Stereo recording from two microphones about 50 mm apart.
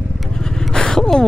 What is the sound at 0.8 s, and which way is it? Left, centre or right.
Gasp, centre.